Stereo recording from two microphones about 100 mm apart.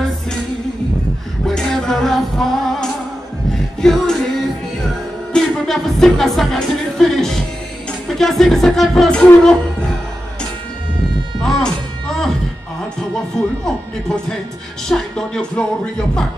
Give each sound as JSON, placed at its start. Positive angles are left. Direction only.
{"t": 1.4, "sound": "music", "side_deg": 5}
{"t": 5.3, "sound": "music", "side_deg": 5}
{"t": 11.4, "sound": "music", "side_deg": 5}
{"t": 14.9, "sound": "speech", "side_deg": 5}